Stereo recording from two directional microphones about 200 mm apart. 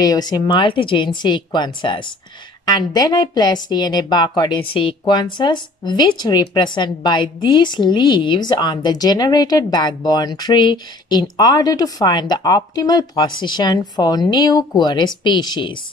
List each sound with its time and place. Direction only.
0.0 s speech: 20° left (ahead or behind)